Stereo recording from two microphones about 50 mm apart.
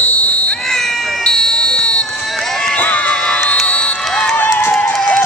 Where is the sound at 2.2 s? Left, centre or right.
Centre.